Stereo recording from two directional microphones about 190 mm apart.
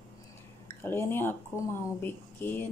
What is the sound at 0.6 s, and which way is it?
Speech, 10° left (ahead or behind).